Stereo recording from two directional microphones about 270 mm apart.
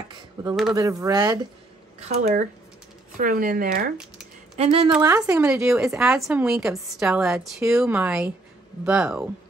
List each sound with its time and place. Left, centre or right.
0.1 s a sound: centre
0.7 s speech: centre; by 3.8 s right
4.6 s a woman's voice: right; by 9.3 s centre